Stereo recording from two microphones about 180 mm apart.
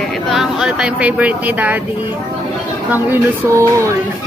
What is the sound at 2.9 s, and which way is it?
Speech, 10° right (ahead or behind).